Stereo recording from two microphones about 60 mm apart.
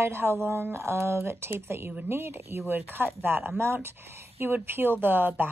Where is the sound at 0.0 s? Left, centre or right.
Right.